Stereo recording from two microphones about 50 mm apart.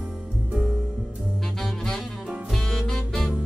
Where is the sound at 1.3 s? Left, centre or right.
Centre.